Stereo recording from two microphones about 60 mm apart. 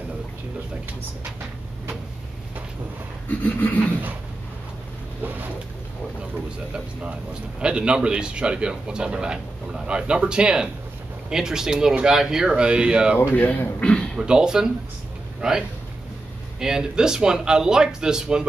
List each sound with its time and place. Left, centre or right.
3.3 s a man's voice: left
6.3 s a man's voice: centre
13.2 s a man's voice: left
14.1 s a man's voice: centre